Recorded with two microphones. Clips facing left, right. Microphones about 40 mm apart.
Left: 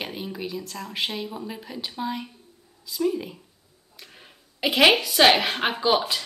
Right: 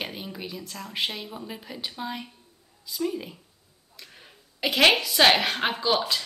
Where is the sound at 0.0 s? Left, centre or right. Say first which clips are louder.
Left 3 dB; centre.